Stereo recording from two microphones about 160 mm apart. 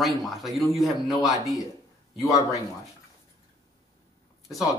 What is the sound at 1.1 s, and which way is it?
Speech, 20° left (ahead or behind).